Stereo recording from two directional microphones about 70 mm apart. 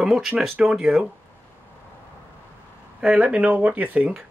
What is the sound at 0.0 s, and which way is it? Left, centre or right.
Speech, centre.